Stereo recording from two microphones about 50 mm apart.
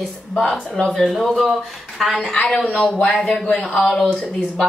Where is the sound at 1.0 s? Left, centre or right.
Centre.